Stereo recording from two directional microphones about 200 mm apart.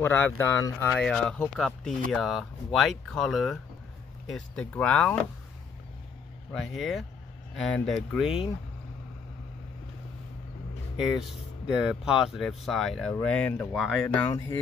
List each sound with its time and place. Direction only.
0.0 s speech: 10° left (ahead or behind)
6.5 s speech: centre (ahead or behind)
11.0 s speech: 5° right (ahead or behind)
14.2 s speech: 20° left (ahead or behind)